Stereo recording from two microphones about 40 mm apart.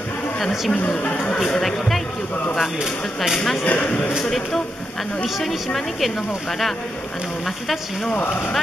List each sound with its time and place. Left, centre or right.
0.4 s speech: centre
0.7 s a man's voice: left
1.6 s speech: centre
3.6 s a man's voice: left
4.2 s a woman's voice: centre